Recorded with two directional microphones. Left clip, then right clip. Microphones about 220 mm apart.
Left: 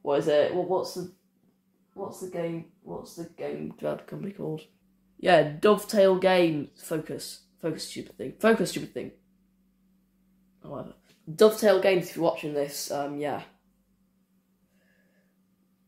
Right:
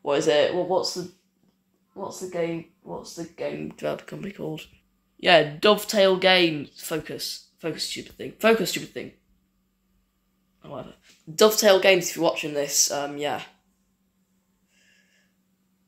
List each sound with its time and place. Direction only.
0.0 s speech: 15° right (ahead or behind)
3.6 s speech: 15° right (ahead or behind)
10.6 s speech: 5° right (ahead or behind)